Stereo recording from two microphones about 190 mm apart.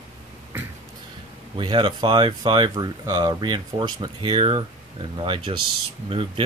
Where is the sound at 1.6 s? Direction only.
25° right (ahead or behind).